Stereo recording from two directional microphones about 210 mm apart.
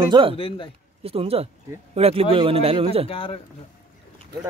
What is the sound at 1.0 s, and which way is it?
Speech, 30° right (ahead or behind).